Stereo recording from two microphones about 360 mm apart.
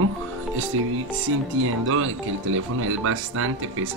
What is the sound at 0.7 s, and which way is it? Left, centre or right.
Speech, right.